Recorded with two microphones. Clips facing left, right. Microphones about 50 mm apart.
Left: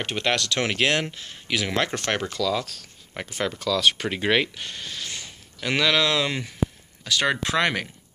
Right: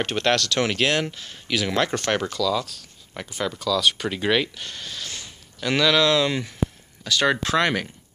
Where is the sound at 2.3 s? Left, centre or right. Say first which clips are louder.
Right 2 dB; left.